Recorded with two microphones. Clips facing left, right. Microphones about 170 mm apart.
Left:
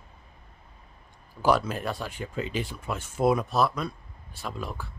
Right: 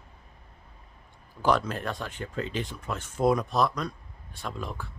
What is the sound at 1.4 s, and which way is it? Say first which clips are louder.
Speech: left 1 dB; 10° left (ahead or behind).